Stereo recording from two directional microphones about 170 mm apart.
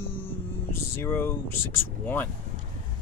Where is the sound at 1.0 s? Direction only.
15° left (ahead or behind).